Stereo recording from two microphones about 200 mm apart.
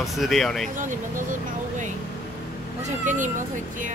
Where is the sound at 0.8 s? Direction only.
40° right (ahead or behind).